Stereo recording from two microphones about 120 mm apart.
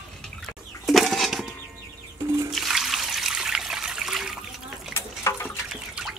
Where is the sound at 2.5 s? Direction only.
Centre (ahead or behind).